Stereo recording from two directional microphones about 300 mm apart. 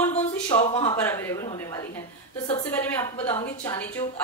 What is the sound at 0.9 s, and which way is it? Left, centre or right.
Speech, centre.